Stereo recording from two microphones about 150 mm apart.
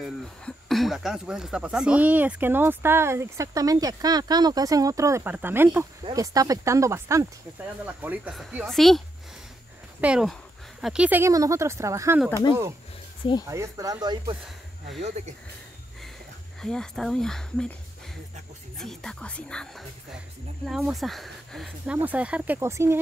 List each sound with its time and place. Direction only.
0.0 s speech: centre (ahead or behind); by 7.2 s 20° right (ahead or behind)
7.8 s speech: 10° right (ahead or behind)
13.5 s speech: 20° right (ahead or behind)
15.0 s speech: 50° right (ahead or behind)
16.6 s speech: 5° left (ahead or behind)
18.8 s speech: centre (ahead or behind)
21.9 s speech: 10° right (ahead or behind)